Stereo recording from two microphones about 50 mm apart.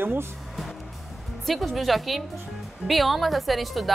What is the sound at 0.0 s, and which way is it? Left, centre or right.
Speech, right.